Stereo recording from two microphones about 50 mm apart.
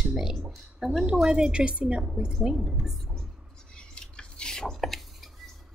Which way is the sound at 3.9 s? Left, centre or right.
Centre.